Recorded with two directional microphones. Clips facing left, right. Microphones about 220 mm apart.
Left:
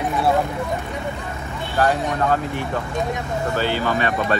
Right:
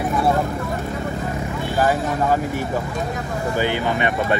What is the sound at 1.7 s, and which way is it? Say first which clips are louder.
Speech: even; 10° right (ahead or behind).